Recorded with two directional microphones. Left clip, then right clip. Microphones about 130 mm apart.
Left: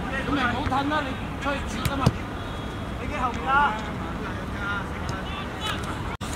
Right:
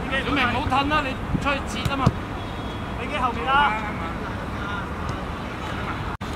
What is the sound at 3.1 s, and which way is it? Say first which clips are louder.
Speech: right 2 dB; 25° right (ahead or behind).